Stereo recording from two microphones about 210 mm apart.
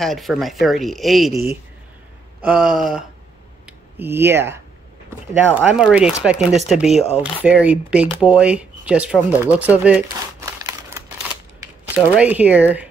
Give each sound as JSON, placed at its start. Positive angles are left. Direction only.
{"t": 0.0, "sound": "speech", "side_deg": 0}
{"t": 2.4, "sound": "speech", "side_deg": -5}
{"t": 10.4, "sound": "a sound", "side_deg": -15}
{"t": 11.9, "sound": "speech", "side_deg": -10}